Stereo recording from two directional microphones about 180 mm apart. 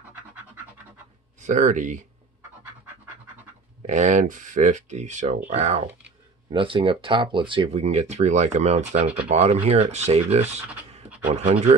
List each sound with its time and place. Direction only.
1.4 s speech: 45° right (ahead or behind)
3.8 s speech: 40° right (ahead or behind)